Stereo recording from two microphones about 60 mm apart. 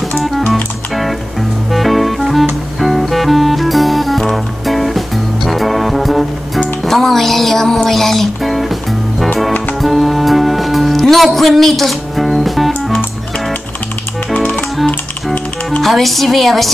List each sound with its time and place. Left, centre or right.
1.7 s music: centre
9.8 s music: centre
14.3 s music: left
15.8 s a woman's voice: centre